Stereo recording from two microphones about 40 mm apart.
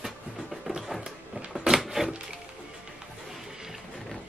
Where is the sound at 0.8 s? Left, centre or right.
Centre.